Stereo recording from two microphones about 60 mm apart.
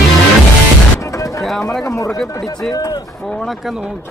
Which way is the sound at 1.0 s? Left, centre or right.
Left.